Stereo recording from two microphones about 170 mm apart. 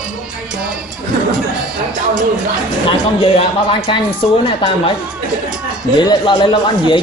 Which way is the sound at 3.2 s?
35° left (ahead or behind).